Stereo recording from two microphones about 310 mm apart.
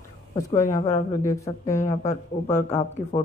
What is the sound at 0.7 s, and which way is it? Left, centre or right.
Speech, left.